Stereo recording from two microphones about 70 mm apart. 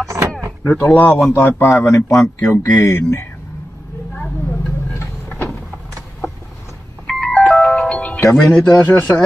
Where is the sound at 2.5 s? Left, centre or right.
Left.